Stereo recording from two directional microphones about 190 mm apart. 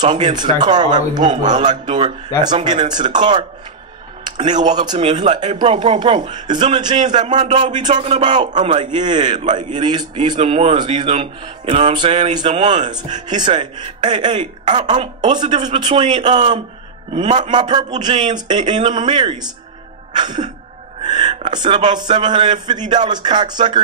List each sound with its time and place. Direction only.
0.0 s a man's voice: 25° right (ahead or behind)
7.3 s a man's voice: 35° right (ahead or behind)
8.9 s a man's voice: 25° right (ahead or behind)
21.0 s music: 25° right (ahead or behind)
21.5 s a man's voice: 25° right (ahead or behind)